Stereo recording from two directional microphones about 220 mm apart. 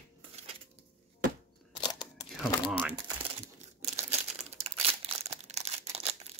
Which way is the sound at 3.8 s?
30° right (ahead or behind).